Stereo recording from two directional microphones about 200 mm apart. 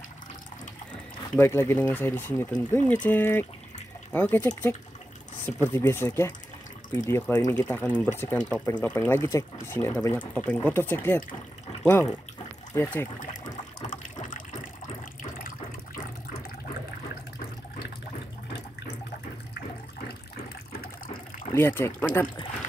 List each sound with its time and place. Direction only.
1.3 s speech: 10° left (ahead or behind)
13.8 s water: 40° left (ahead or behind)
20.8 s water: 45° left (ahead or behind)
21.5 s speech: 10° left (ahead or behind)